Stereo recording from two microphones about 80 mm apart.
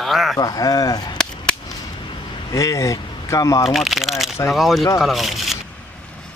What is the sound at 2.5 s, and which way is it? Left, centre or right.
Speech, left.